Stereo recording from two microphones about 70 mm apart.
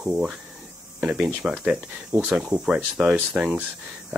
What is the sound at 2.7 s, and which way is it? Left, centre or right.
Speech, centre.